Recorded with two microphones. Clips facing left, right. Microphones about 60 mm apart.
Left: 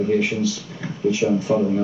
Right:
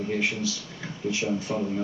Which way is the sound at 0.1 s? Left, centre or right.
Centre.